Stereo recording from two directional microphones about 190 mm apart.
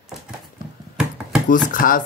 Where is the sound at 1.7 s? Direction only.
45° left (ahead or behind).